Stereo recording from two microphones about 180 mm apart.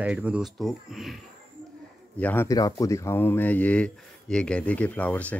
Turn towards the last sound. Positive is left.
turn(degrees=10)  # may be behind; listen again after turning